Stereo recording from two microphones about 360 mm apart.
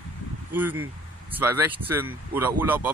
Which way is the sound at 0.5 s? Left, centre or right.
Centre.